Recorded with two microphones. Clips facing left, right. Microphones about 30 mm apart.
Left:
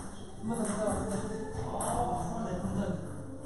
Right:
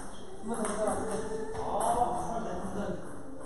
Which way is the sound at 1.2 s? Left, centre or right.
Centre.